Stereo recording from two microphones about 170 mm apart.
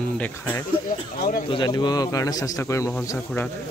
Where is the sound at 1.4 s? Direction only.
25° left (ahead or behind); by 3.5 s 10° left (ahead or behind).